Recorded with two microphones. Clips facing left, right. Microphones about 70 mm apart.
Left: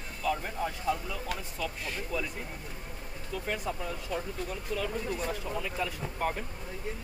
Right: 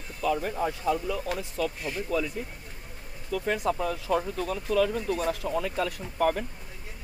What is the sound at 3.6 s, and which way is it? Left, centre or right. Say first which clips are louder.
Speech: right 7 dB; right.